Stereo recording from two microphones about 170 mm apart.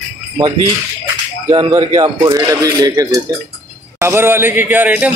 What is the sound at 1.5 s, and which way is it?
A man's voice, 25° right (ahead or behind).